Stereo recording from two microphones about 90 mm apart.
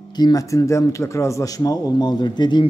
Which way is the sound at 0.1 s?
50° left (ahead or behind).